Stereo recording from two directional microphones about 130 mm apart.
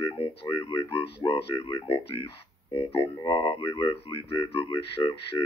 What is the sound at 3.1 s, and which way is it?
Speech, 40° left (ahead or behind).